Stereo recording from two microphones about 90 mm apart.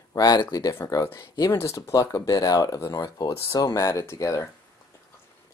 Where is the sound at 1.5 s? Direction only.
30° left (ahead or behind).